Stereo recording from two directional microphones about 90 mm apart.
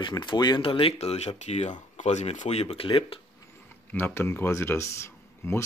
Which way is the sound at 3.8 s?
20° left (ahead or behind).